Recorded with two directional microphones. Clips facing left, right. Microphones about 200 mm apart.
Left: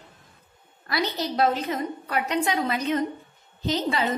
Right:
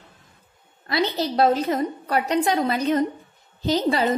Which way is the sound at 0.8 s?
25° right (ahead or behind).